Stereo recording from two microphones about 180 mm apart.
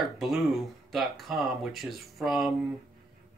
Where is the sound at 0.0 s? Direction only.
Centre (ahead or behind).